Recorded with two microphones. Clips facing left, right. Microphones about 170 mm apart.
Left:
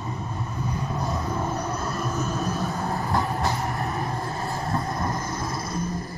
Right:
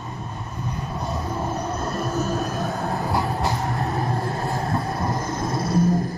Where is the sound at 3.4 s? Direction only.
20° right (ahead or behind).